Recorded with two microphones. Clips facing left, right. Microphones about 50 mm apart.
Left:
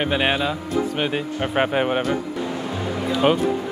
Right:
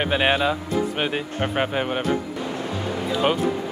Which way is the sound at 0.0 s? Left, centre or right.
Centre.